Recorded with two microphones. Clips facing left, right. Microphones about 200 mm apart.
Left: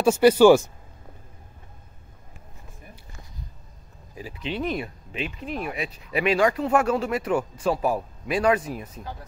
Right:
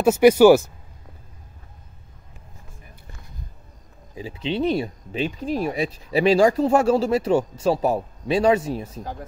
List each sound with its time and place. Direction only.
0.2 s speech: 10° right (ahead or behind)
4.1 s speech: 25° right (ahead or behind)